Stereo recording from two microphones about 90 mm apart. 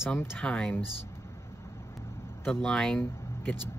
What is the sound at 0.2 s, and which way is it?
Speech, 25° left (ahead or behind).